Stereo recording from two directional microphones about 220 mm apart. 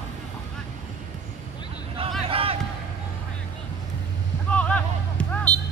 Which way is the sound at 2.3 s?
25° right (ahead or behind).